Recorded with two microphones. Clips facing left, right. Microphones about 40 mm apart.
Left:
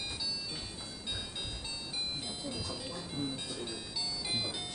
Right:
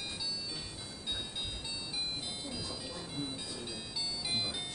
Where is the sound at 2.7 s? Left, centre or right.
Centre.